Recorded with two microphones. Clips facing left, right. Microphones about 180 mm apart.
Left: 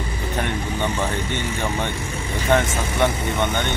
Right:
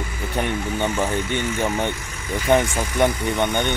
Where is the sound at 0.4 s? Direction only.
10° right (ahead or behind).